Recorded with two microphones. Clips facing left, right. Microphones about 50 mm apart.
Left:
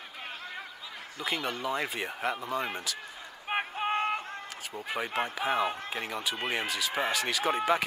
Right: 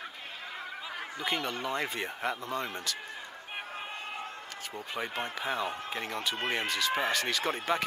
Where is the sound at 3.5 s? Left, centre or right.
Left.